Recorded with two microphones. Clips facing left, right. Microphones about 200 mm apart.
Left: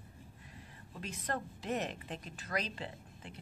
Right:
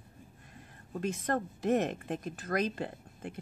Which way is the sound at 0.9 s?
50° right (ahead or behind).